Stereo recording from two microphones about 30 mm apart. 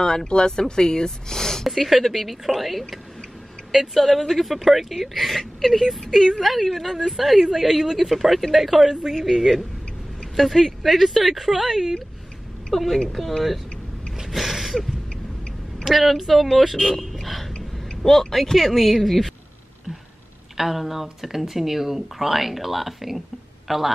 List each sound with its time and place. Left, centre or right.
0.0 s speech: left
1.7 s speech: centre
8.1 s speech: centre
12.7 s speech: centre
14.2 s a sound: centre
15.8 s a woman's voice: centre
16.7 s speech: centre
17.1 s a sound: centre
18.0 s speech: centre
20.5 s speech: centre